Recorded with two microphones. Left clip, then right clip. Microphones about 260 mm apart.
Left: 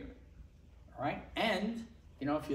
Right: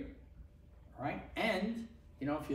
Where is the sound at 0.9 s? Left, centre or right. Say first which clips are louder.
Left 3 dB; centre.